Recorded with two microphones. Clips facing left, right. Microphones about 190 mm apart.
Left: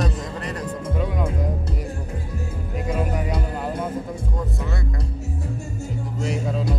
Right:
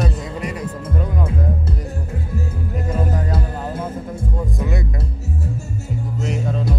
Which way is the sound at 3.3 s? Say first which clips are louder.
Right 1 dB; 5° right (ahead or behind).